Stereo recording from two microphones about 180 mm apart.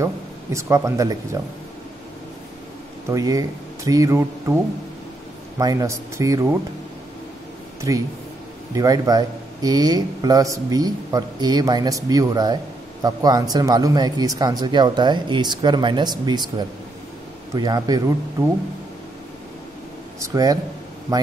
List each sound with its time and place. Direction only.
0.0 s speech: 15° right (ahead or behind)
3.1 s speech: 20° right (ahead or behind)
5.6 s speech: 20° right (ahead or behind)
8.7 s speech: 20° right (ahead or behind)
20.2 s speech: 20° right (ahead or behind)